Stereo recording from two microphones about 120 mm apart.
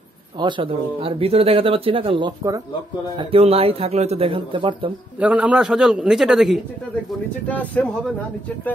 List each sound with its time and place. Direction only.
0.4 s speech: 45° right (ahead or behind)
5.2 s a man's voice: 10° right (ahead or behind)
7.4 s speech: 10° left (ahead or behind)